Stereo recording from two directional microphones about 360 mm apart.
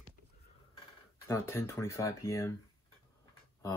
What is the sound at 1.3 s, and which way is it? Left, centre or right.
Speech, centre.